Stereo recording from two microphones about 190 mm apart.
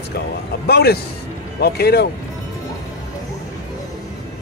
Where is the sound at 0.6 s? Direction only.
55° left (ahead or behind).